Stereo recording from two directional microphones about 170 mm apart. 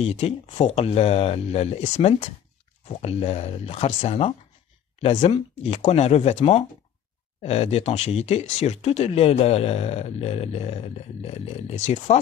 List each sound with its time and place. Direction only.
0.0 s speech: 40° left (ahead or behind)